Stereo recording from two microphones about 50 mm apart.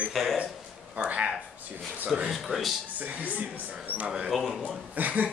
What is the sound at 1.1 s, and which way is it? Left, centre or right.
Speech, right.